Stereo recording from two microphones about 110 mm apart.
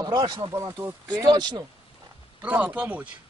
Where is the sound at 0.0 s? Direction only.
40° right (ahead or behind).